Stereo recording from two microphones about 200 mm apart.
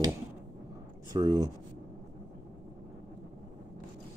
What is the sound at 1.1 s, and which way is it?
Speech, 20° right (ahead or behind).